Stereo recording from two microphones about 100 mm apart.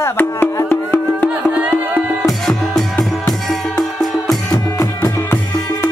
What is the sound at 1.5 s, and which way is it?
Music, 15° right (ahead or behind).